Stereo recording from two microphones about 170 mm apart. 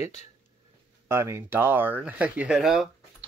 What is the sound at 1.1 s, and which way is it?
Speech, 15° right (ahead or behind).